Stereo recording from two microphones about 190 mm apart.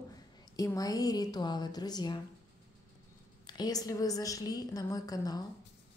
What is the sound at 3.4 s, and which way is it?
A woman's voice, 20° left (ahead or behind).